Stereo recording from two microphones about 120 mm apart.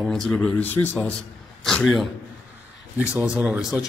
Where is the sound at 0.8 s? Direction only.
25° left (ahead or behind).